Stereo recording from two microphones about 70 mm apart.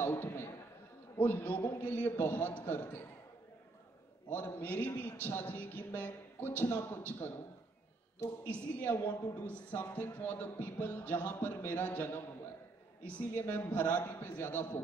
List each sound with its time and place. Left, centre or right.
0.0 s a sound: left
1.1 s a man's voice: left
4.3 s a man's voice: left
8.5 s a man's voice: left